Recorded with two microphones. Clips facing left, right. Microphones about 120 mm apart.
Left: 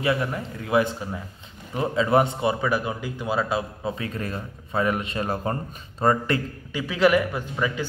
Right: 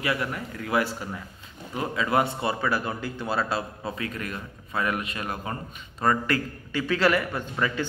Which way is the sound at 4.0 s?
30° left (ahead or behind).